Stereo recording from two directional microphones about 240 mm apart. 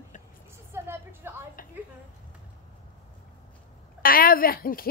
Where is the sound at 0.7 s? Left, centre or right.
Centre.